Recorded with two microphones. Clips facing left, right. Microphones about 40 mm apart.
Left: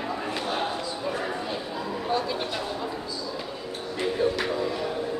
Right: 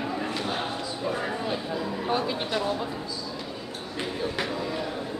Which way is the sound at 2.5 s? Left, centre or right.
Centre.